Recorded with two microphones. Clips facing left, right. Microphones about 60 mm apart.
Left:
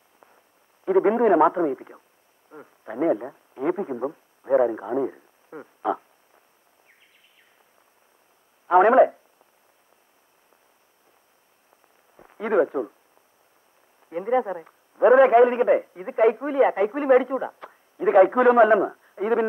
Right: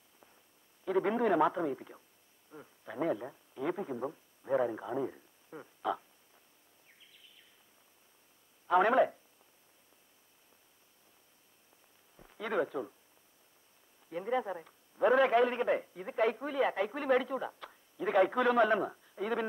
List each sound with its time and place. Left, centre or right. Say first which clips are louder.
0.8 s a man's voice: left 11 dB; left
8.6 s speech: left 11 dB; left
12.2 s speech: left 12 dB; left
14.0 s a man's voice: left 10 dB; left